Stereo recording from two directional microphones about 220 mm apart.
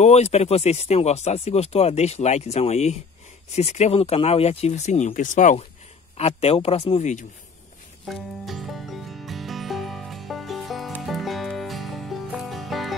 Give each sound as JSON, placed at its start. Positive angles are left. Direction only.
{"t": 0.0, "sound": "speech", "side_deg": 30}
{"t": 8.1, "sound": "music", "side_deg": 0}